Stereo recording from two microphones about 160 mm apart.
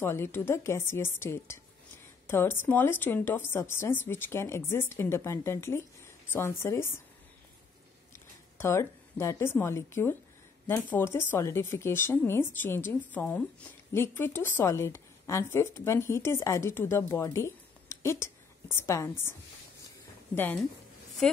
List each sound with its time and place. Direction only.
0.0 s speech: 15° left (ahead or behind)
8.5 s speech: 15° left (ahead or behind)